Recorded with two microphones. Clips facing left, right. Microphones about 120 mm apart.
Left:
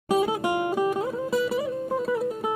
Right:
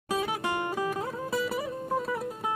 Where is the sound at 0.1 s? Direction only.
15° left (ahead or behind).